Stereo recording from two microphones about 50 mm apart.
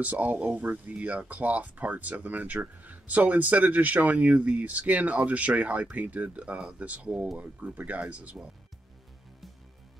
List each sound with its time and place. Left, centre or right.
0.0 s speech: right